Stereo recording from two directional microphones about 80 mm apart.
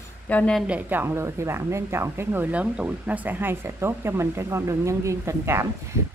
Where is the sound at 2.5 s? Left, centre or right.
Centre; by 5.7 s right.